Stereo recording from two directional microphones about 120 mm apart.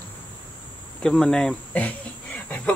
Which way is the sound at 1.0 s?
5° left (ahead or behind).